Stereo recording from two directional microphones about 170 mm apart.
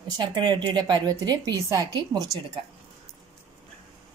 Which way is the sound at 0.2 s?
25° right (ahead or behind).